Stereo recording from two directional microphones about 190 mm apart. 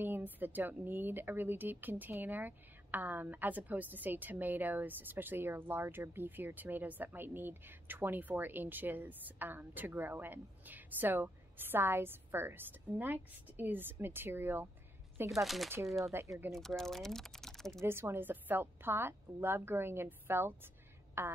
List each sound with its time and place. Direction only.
0.0 s a woman's voice: 10° right (ahead or behind)
15.3 s speech: centre (ahead or behind)
16.1 s a woman's voice: 15° right (ahead or behind)
16.5 s speech: centre (ahead or behind)
17.8 s a woman's voice: 10° right (ahead or behind)